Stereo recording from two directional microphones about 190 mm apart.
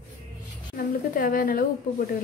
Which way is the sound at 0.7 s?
45° left (ahead or behind).